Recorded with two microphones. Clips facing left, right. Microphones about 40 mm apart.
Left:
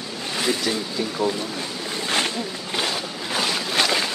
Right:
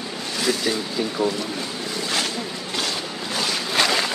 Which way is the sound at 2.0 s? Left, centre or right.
Left.